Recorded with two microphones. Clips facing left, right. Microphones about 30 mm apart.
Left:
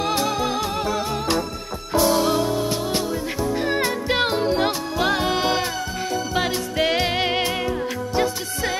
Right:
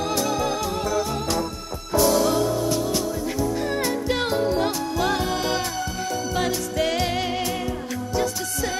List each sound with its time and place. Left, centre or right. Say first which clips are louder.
0.1 s music: left 1 dB; left